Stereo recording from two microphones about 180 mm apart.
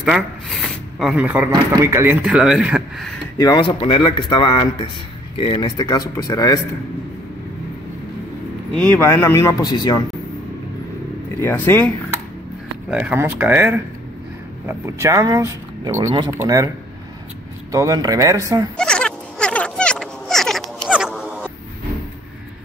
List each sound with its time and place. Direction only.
0.0 s speech: centre (ahead or behind)
1.5 s speech: 20° right (ahead or behind)
3.3 s speech: 20° left (ahead or behind)
8.7 s speech: 10° left (ahead or behind)
11.4 s speech: 10° left (ahead or behind)
12.9 s speech: 10° right (ahead or behind)
18.8 s a sound: 5° left (ahead or behind)